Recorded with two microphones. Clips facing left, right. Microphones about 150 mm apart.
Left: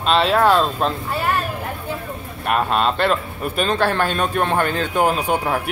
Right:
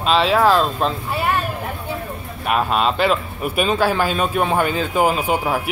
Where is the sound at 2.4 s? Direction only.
Centre (ahead or behind).